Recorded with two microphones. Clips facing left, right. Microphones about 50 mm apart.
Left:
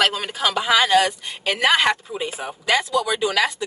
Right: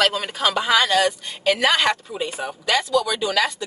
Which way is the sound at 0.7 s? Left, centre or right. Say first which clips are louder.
Left 3 dB; centre.